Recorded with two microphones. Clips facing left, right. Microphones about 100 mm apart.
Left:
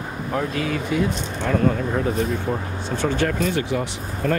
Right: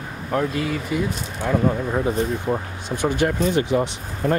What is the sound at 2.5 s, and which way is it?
Speech, 25° right (ahead or behind).